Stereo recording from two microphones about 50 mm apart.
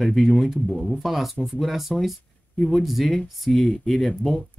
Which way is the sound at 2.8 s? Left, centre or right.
Centre.